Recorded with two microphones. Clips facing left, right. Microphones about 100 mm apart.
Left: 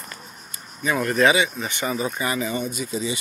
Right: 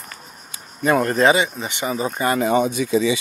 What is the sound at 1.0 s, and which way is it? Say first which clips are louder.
Speech: left 1 dB; 35° right (ahead or behind).